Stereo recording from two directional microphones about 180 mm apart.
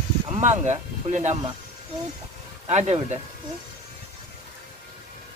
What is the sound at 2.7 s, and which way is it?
Speech, 40° right (ahead or behind).